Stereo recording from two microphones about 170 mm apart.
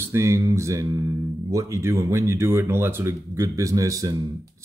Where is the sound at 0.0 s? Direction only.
15° right (ahead or behind).